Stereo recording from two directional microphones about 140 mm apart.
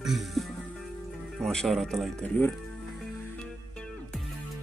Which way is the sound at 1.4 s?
Centre (ahead or behind).